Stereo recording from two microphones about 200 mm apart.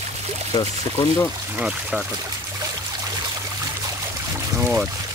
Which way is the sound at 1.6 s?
Centre (ahead or behind).